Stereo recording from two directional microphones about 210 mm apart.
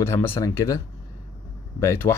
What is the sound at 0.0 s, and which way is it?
Speech, 10° left (ahead or behind).